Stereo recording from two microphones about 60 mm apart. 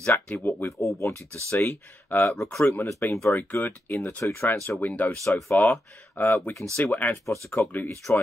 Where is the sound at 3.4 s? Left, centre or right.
Left.